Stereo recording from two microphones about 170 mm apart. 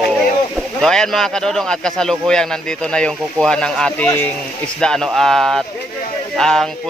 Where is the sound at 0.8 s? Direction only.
5° left (ahead or behind).